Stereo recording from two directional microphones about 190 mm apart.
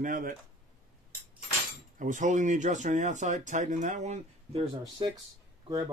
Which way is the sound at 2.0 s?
40° right (ahead or behind).